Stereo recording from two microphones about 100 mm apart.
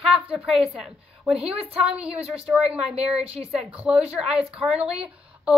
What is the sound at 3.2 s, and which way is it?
Speech, 90° right.